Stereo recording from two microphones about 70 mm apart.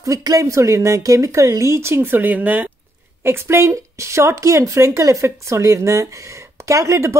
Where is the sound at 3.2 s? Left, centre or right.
Right.